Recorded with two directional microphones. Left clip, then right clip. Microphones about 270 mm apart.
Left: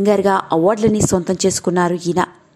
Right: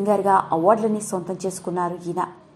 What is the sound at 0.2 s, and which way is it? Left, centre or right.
A woman's voice, left.